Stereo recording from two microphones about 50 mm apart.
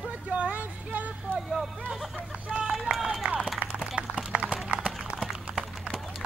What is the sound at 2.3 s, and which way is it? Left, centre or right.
Speech, right.